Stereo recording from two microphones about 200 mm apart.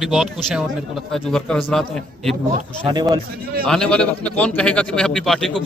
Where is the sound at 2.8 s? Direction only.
20° right (ahead or behind).